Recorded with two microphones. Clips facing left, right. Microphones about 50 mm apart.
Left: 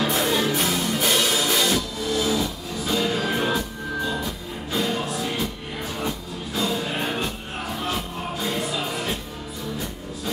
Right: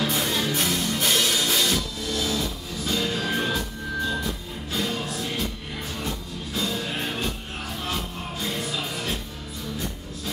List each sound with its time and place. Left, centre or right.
0.0 s music: centre